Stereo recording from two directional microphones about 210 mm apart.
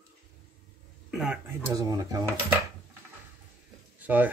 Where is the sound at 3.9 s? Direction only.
10° right (ahead or behind).